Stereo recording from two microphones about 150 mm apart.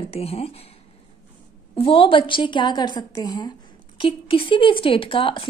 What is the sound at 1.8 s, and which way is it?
A woman's voice, 35° left (ahead or behind).